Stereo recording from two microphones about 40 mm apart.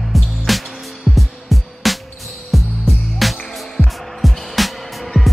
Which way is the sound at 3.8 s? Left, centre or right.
Left.